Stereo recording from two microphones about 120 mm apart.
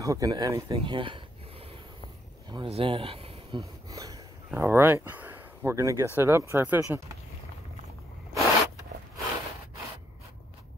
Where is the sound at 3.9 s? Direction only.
30° right (ahead or behind).